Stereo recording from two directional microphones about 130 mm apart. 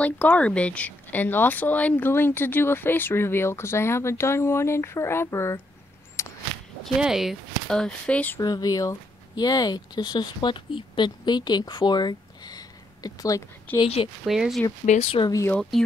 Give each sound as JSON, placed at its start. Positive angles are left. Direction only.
{"t": 0.0, "sound": "speech", "side_deg": 10}
{"t": 6.2, "sound": "a sound", "side_deg": 20}
{"t": 7.0, "sound": "speech", "side_deg": -5}
{"t": 8.4, "sound": "speech", "side_deg": 30}
{"t": 13.7, "sound": "speech", "side_deg": 50}
{"t": 14.2, "sound": "speech", "side_deg": 0}
{"t": 14.9, "sound": "speech", "side_deg": 50}
{"t": 15.2, "sound": "speech", "side_deg": 25}